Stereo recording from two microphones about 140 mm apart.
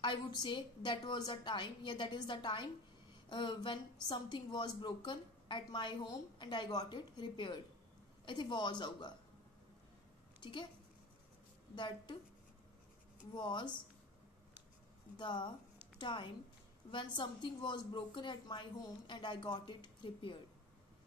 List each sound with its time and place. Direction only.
0.0 s a woman's voice: 35° left (ahead or behind)
10.4 s a woman's voice: 35° left (ahead or behind)
11.7 s a woman's voice: 35° left (ahead or behind)
13.3 s a woman's voice: 35° left (ahead or behind)
15.1 s a woman's voice: 35° left (ahead or behind)